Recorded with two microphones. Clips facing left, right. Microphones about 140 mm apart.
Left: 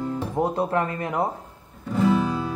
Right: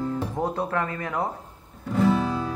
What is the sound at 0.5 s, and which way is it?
Speech, 25° left (ahead or behind).